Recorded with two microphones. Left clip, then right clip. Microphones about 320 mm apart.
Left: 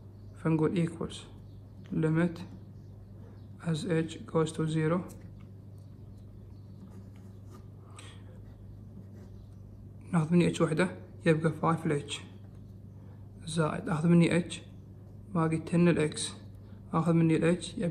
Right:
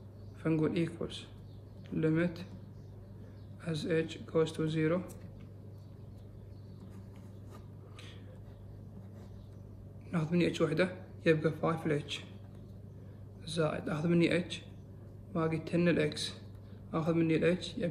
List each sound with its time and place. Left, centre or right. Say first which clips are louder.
0.4 s a man's voice: left 2 dB; centre
2.0 s a man's voice: left 1 dB; centre
3.6 s a man's voice: left 1 dB; centre
10.0 s a man's voice: left 3 dB; centre
13.5 s a man's voice: left 2 dB; centre